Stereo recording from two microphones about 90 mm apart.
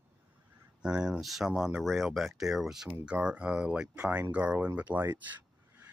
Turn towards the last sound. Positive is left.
turn(degrees=-20)  # may be behind; listen again after turning